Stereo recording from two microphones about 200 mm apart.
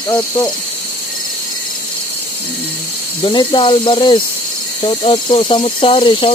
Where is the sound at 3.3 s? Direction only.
25° left (ahead or behind).